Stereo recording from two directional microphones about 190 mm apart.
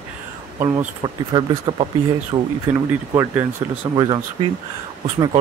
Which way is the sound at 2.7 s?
10° right (ahead or behind).